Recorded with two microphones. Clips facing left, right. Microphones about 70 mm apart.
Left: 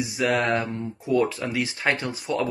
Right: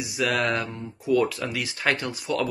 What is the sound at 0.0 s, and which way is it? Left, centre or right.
Speech, left.